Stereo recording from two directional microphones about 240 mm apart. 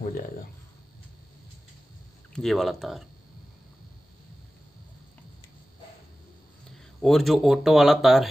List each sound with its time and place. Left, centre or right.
2.3 s speech: centre
7.0 s speech: centre